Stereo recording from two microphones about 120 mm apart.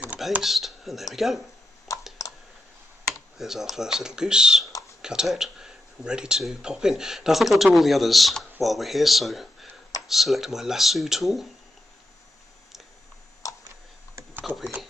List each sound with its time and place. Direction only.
0.0 s speech: 10° right (ahead or behind)
1.9 s computer keyboard: 25° left (ahead or behind)
3.3 s speech: 5° right (ahead or behind)
13.4 s a sound: 30° left (ahead or behind)
14.6 s speech: 10° right (ahead or behind)